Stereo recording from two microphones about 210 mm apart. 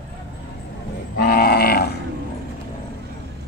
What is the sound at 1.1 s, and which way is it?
Livestock, 45° left (ahead or behind).